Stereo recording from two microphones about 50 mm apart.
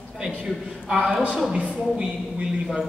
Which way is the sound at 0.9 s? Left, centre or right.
Centre.